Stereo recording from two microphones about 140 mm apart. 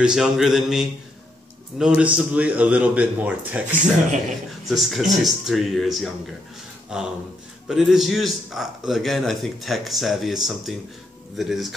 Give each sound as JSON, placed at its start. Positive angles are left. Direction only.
{"t": 0.0, "sound": "a man's voice", "side_deg": -5}
{"t": 3.7, "sound": "speech", "side_deg": -60}
{"t": 4.6, "sound": "a man's voice", "side_deg": 0}